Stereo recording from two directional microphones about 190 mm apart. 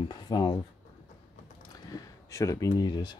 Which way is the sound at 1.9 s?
15° left (ahead or behind).